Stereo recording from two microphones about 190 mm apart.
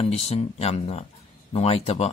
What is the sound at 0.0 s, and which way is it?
Speech, 30° left (ahead or behind).